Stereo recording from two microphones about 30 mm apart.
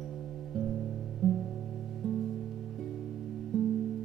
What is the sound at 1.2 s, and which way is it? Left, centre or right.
Music, centre.